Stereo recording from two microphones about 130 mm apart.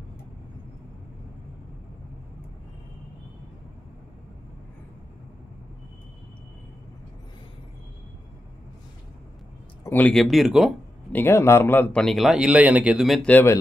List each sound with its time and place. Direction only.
9.8 s speech: 15° left (ahead or behind)
10.1 s a man's voice: centre (ahead or behind)
11.1 s a man's voice: 15° left (ahead or behind); by 13.3 s centre (ahead or behind)
13.3 s speech: 15° left (ahead or behind)